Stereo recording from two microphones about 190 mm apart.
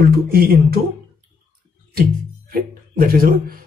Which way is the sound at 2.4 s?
50° right (ahead or behind).